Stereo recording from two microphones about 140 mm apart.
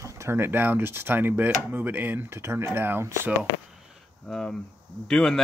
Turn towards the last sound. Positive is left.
turn(degrees=5)  # may be behind; listen again after turning